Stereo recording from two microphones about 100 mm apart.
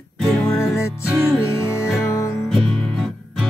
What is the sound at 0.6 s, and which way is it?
Music, 30° left (ahead or behind).